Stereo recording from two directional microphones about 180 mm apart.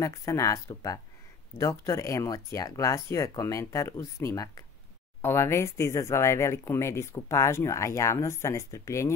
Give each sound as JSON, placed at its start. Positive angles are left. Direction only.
{"t": 0.0, "sound": "speech", "side_deg": 15}